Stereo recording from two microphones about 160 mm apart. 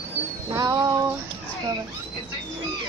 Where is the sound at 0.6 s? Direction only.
25° right (ahead or behind).